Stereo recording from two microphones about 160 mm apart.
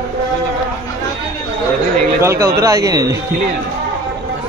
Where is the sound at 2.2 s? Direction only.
20° right (ahead or behind).